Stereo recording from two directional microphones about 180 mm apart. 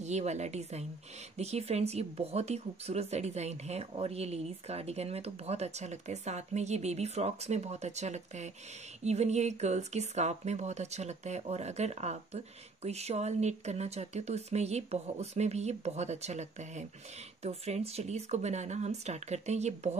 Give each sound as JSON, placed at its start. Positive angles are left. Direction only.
{"t": 0.0, "sound": "speech", "side_deg": -40}